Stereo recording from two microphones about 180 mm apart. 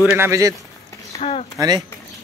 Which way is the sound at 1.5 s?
20° right (ahead or behind).